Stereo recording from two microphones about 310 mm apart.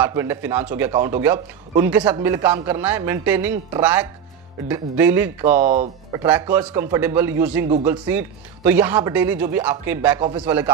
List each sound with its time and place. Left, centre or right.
0.0 s speech: centre
5.6 s speech: right
6.1 s speech: centre